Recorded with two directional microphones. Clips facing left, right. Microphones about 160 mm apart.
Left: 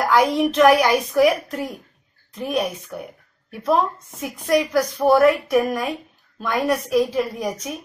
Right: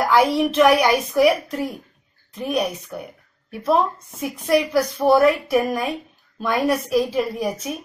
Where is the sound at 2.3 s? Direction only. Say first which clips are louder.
Right 1 dB; centre (ahead or behind).